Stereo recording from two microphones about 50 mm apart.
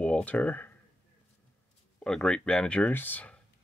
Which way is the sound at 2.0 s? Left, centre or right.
Centre.